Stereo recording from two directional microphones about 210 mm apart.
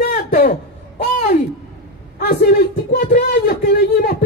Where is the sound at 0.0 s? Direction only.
45° left (ahead or behind).